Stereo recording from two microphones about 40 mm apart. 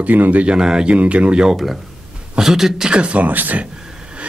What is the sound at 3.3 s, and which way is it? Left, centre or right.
Speech, right.